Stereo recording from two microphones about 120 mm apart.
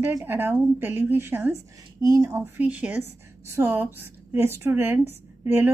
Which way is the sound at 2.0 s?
30° right (ahead or behind).